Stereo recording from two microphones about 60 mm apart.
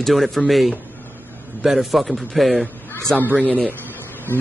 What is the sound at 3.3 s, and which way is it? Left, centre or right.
Speech, right.